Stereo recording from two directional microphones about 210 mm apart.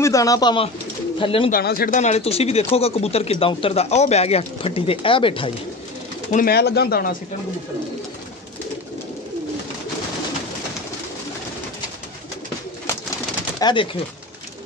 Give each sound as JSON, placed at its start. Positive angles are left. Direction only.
{"t": 0.0, "sound": "speech", "side_deg": 15}
{"t": 1.5, "sound": "speech", "side_deg": 45}
{"t": 6.3, "sound": "speech", "side_deg": 45}
{"t": 13.6, "sound": "speech", "side_deg": 20}